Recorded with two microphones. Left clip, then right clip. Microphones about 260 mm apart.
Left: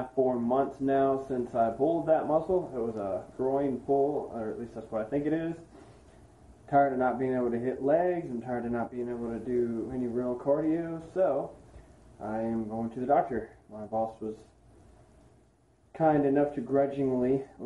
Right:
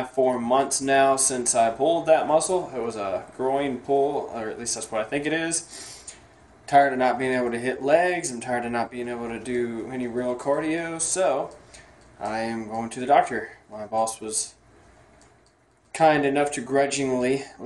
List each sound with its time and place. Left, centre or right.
0.1 s speech: right
6.6 s speech: right
15.9 s speech: right